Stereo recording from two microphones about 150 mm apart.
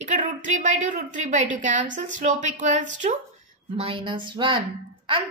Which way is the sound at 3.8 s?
35° right (ahead or behind).